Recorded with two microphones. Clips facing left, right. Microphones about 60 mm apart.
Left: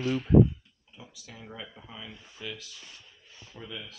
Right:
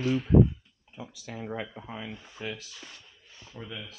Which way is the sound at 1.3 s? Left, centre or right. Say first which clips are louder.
Right 8 dB; right.